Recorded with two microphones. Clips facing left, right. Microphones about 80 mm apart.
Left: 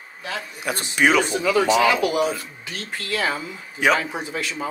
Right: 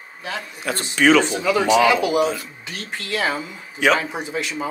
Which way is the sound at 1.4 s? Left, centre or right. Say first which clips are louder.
Right 1 dB; centre.